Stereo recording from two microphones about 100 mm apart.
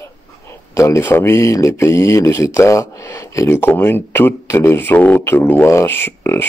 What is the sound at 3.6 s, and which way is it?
Speech, 20° left (ahead or behind).